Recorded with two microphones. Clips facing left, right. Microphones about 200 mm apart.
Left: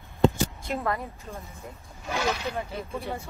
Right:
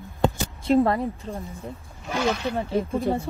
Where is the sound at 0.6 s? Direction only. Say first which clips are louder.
Right 10 dB; 30° right (ahead or behind).